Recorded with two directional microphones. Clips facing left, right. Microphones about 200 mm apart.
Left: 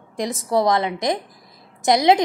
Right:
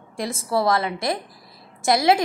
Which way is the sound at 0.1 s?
20° left (ahead or behind).